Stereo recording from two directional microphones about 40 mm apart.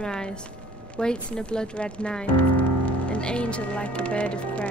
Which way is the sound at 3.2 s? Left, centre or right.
Left.